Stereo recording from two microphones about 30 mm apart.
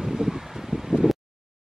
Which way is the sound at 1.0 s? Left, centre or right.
Centre.